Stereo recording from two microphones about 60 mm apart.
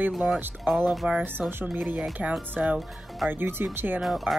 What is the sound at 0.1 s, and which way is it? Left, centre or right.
Speech, centre.